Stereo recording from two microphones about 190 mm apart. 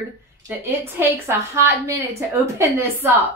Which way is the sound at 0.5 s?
10° right (ahead or behind).